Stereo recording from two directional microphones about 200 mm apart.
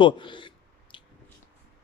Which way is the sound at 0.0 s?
25° left (ahead or behind).